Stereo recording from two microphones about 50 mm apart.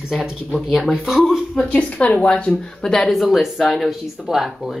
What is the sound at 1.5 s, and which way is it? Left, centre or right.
Speech, left.